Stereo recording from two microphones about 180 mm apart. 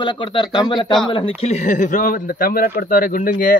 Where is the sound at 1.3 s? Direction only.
40° left (ahead or behind).